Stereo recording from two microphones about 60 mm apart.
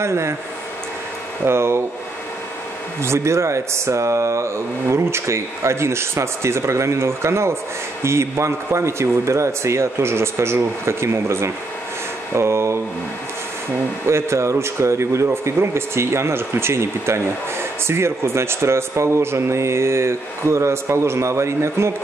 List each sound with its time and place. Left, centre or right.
0.0 s speech: right
1.4 s speech: right
3.0 s speech: right
14.0 s speech: right